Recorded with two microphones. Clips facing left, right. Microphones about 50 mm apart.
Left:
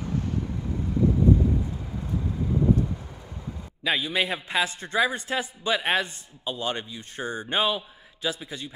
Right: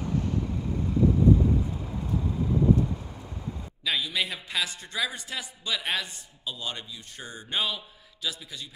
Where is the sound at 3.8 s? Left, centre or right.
Left.